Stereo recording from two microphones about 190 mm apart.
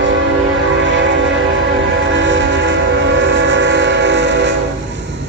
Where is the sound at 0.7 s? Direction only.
80° right.